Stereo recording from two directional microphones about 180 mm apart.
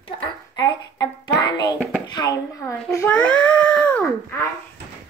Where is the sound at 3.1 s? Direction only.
5° left (ahead or behind).